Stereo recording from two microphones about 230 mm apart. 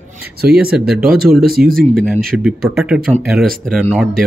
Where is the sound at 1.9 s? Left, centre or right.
Centre.